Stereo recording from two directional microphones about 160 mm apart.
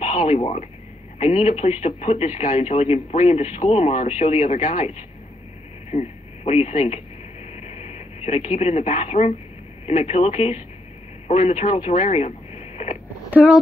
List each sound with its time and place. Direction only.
0.0 s speech: 45° left (ahead or behind)
7.5 s a sound: 40° left (ahead or behind)
9.8 s speech: 40° left (ahead or behind)
13.3 s speech: 10° right (ahead or behind)